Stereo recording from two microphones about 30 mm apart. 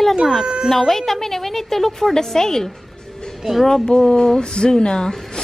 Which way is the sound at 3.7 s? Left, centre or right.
Left.